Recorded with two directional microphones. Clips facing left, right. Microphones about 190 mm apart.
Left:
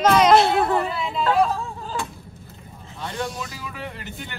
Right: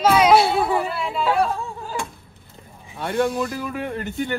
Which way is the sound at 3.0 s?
55° right (ahead or behind).